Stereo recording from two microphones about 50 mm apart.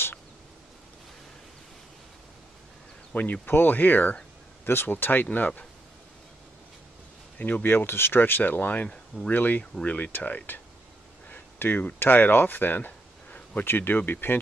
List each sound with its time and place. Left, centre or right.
3.2 s speech: left
4.6 s speech: left
4.9 s speech: left
7.3 s speech: left
7.6 s speech: left
8.8 s speech: centre
9.3 s speech: left
9.8 s speech: left
11.5 s a sound: left
12.0 s speech: left